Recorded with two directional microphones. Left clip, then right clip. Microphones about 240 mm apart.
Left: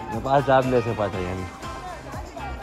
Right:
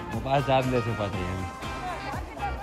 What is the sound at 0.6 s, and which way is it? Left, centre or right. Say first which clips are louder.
Speech: left 5 dB; centre.